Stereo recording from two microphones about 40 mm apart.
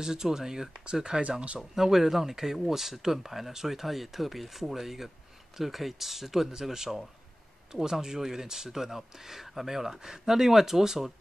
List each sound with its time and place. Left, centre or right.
0.0 s speech: centre
1.0 s speech: right
1.6 s speech: centre